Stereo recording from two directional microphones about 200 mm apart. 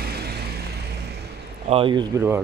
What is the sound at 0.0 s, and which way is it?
Music, 50° right (ahead or behind).